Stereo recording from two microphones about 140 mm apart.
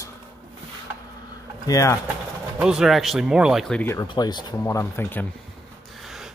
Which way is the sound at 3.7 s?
15° left (ahead or behind).